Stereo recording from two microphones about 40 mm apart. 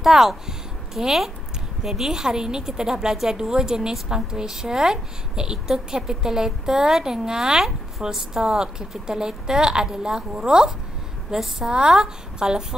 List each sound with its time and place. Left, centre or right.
0.0 s a woman's voice: centre